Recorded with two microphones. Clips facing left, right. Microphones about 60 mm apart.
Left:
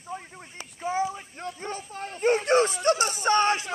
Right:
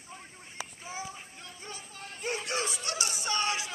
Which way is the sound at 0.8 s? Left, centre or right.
Left.